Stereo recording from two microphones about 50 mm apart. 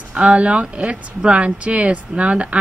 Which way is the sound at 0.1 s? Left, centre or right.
Right.